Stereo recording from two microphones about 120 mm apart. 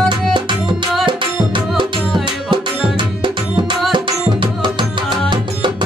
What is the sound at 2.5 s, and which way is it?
Music, 45° right (ahead or behind).